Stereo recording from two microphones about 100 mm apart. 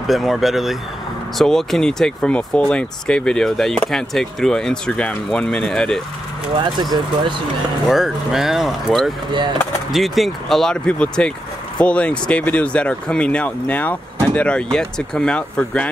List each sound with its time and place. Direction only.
0.0 s speech: centre (ahead or behind)
6.6 s speech: 50° right (ahead or behind)
7.9 s speech: 5° right (ahead or behind)